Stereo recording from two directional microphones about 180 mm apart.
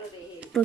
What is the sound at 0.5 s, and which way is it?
Speech, centre (ahead or behind).